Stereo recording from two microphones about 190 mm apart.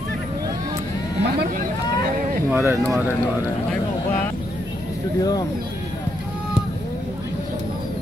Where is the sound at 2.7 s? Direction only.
15° right (ahead or behind).